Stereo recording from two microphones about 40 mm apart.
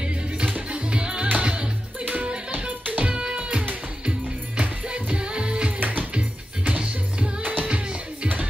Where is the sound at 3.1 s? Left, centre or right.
Right.